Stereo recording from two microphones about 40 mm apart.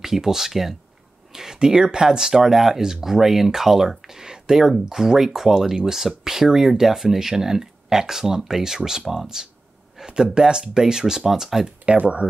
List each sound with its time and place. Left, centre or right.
0.0 s speech: centre
12.0 s speech: right